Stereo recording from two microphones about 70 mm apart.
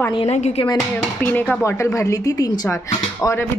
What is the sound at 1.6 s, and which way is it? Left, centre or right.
Speech, left.